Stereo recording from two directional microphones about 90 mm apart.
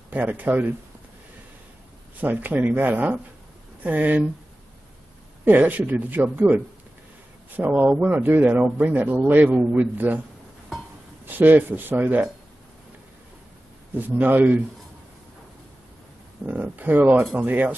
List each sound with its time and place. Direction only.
0.1 s speech: 20° right (ahead or behind)
2.2 s speech: 20° right (ahead or behind)
5.4 s speech: 20° right (ahead or behind)
11.2 s speech: 20° right (ahead or behind)
13.9 s speech: 20° right (ahead or behind)
16.4 s speech: 15° right (ahead or behind)